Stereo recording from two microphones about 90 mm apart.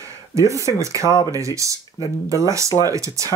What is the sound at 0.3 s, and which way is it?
Speech, 35° right (ahead or behind).